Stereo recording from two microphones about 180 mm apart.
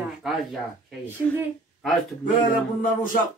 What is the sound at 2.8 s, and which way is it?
Music, 50° left (ahead or behind).